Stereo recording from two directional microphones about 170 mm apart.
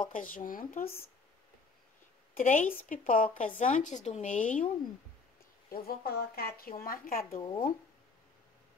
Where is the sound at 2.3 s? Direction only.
50° left (ahead or behind).